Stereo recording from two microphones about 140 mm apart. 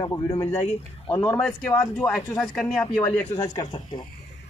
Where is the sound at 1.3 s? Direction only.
5° left (ahead or behind).